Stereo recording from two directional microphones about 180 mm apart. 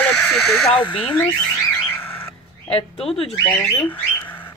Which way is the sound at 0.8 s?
30° left (ahead or behind).